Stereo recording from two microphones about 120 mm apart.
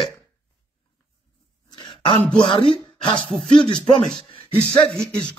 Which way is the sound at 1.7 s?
40° left (ahead or behind).